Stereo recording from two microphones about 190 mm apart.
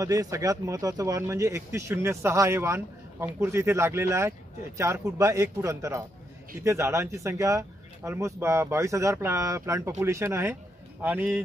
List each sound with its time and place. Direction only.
0.0 s speech: 15° right (ahead or behind)